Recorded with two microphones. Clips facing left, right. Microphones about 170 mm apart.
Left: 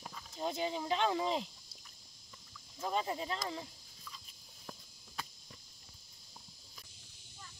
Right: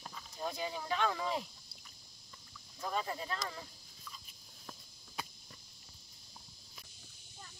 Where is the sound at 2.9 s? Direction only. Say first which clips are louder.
Left 2 dB; 20° left (ahead or behind).